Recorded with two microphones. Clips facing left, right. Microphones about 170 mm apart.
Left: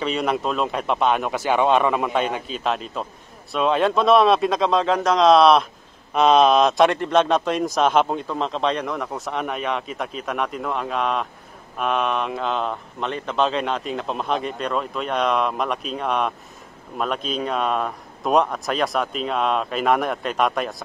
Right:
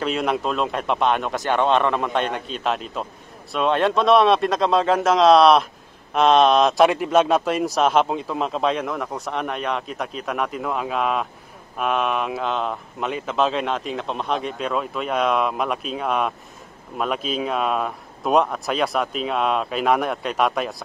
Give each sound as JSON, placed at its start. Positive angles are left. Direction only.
{"t": 0.0, "sound": "speech", "side_deg": 0}